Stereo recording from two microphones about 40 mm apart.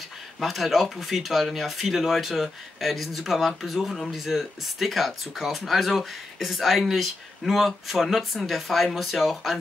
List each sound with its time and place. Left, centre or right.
0.4 s speech: centre